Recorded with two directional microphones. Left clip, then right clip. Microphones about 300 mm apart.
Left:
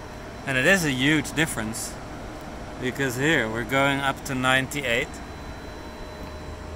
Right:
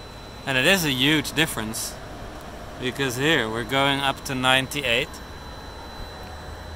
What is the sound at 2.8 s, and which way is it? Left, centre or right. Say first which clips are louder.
Speech: right 1 dB; centre.